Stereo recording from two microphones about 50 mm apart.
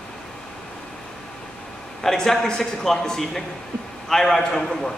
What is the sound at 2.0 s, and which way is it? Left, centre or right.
A man's voice, centre.